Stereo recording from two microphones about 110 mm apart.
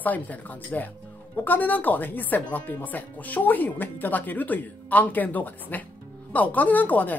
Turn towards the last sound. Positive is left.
turn(degrees=15)  # may be behind; listen again after turning